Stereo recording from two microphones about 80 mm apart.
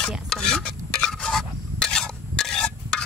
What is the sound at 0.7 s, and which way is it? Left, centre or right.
Stir, centre.